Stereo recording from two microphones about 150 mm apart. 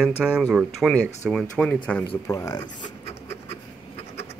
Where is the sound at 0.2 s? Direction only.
5° right (ahead or behind).